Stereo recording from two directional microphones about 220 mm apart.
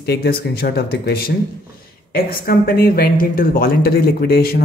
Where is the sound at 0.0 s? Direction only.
45° left (ahead or behind).